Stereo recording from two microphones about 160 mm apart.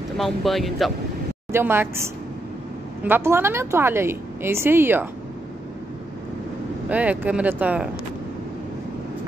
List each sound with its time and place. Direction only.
0.2 s speech: centre (ahead or behind)
1.5 s a woman's voice: 15° right (ahead or behind)
6.9 s a woman's voice: 10° right (ahead or behind)